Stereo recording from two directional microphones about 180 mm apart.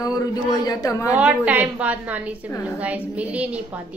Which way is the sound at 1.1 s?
10° right (ahead or behind).